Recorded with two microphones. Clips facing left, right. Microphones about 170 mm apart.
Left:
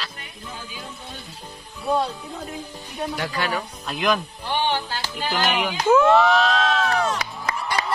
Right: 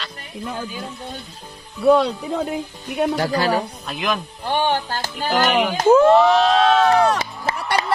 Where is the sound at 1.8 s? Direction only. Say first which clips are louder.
Right 8 dB; 80° right.